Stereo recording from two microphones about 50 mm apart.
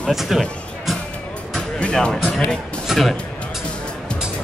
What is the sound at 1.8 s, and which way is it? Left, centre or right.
Speech, centre.